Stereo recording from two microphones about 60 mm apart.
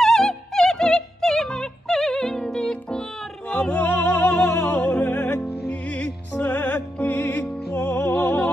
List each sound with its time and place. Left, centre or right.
0.0 s opera: centre
3.5 s music: left
4.6 s music: left